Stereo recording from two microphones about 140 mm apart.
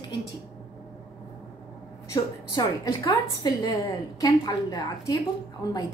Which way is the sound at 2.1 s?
25° left (ahead or behind).